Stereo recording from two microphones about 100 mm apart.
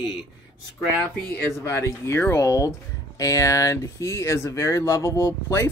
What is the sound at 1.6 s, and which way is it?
A man's voice, 30° left (ahead or behind).